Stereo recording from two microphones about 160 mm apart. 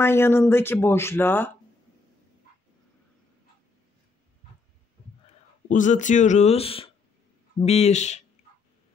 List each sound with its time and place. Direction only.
0.0 s speech: 15° left (ahead or behind)
5.7 s speech: 50° left (ahead or behind)
8.4 s a sound: 45° left (ahead or behind)